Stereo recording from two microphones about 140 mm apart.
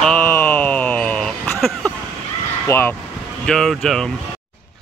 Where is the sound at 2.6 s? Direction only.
20° left (ahead or behind).